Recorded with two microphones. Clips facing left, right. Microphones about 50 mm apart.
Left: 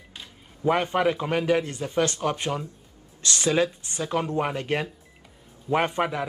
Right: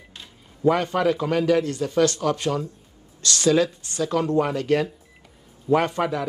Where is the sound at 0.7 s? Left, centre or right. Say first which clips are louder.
Right 2 dB; left.